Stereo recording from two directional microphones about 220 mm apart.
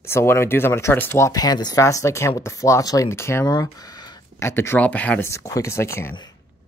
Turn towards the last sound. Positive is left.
turn(degrees=15)  # may be behind; listen again after turning